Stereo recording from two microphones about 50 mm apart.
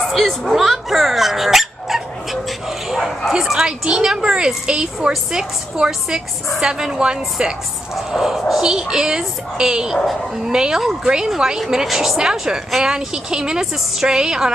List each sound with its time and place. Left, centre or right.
0.0 s speech: centre
3.3 s speech: centre
3.5 s a woman's voice: centre